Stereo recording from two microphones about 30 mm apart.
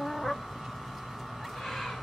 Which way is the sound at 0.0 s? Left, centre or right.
Centre.